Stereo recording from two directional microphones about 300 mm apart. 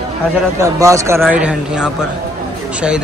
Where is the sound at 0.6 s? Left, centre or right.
Centre.